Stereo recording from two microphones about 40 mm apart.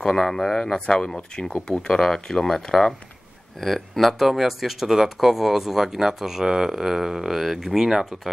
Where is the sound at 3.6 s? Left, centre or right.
Centre.